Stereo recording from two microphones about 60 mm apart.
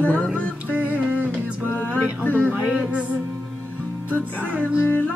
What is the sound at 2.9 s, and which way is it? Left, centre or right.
Music, centre.